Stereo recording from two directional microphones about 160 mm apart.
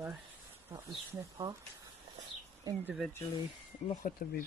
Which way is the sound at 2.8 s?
Centre (ahead or behind).